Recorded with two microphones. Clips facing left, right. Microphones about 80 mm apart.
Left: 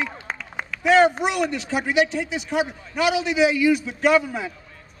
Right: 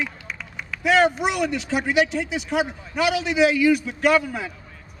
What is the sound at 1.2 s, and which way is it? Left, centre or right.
Speech, centre.